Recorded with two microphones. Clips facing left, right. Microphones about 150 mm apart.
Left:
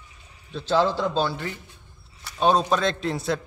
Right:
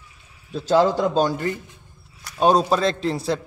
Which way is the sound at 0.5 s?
10° right (ahead or behind).